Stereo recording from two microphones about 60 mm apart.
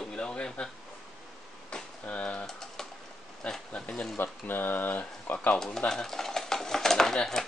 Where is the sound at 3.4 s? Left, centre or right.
Centre.